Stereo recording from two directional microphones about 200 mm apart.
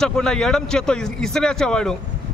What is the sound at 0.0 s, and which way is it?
A man's voice, 5° left (ahead or behind).